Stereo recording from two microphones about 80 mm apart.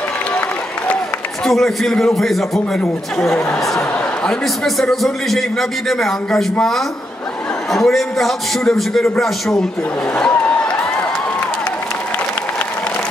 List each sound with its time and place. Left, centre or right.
1.4 s a man's voice: centre
7.7 s a man's voice: centre
10.3 s a sound: centre